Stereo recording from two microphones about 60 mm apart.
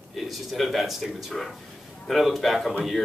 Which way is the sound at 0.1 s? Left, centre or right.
Centre.